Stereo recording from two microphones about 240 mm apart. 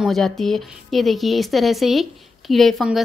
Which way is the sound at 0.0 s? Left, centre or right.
Centre.